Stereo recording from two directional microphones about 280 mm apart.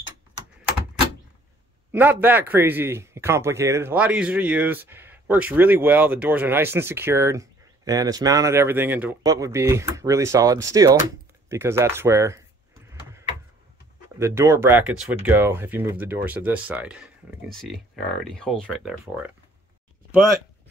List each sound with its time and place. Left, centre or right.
1.9 s a man's voice: centre
14.1 s speech: centre